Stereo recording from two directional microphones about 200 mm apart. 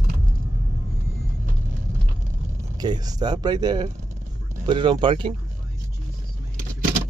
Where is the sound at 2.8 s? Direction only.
20° right (ahead or behind).